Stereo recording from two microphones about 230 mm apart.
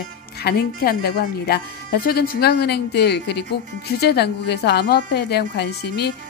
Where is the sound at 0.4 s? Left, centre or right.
Left.